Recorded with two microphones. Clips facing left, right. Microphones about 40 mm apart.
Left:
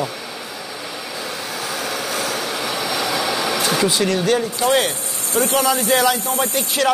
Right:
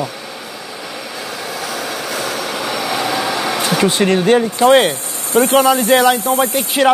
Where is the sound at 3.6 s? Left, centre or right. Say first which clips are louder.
Right 5 dB; right; by 6.8 s centre.